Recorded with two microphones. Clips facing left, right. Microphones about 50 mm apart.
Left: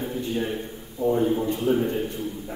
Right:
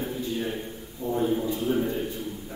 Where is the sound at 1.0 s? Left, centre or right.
Left.